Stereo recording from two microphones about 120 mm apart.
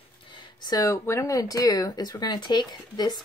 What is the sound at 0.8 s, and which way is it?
Speech, 25° left (ahead or behind).